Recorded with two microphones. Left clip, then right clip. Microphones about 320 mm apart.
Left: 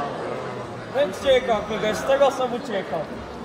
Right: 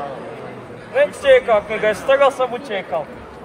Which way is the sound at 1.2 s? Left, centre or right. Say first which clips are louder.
Right 7 dB; right.